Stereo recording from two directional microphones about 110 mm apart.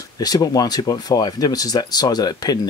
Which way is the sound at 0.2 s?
35° left (ahead or behind).